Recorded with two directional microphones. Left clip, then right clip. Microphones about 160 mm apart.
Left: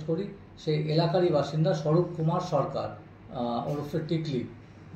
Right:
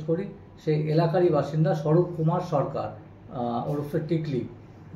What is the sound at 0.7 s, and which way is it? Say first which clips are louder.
Speech: right 3 dB; 5° right (ahead or behind).